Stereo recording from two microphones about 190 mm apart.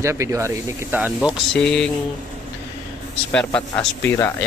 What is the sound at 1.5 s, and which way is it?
Speech, 5° left (ahead or behind).